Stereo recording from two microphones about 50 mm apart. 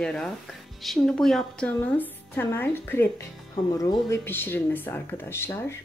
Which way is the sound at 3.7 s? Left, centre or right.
Left.